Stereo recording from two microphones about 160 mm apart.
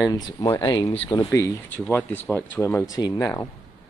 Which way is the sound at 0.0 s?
25° left (ahead or behind).